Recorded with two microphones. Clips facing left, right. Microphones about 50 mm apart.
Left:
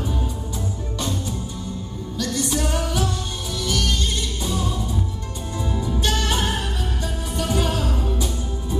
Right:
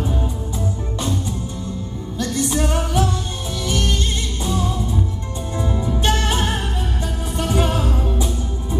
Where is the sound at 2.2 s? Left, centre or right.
Centre.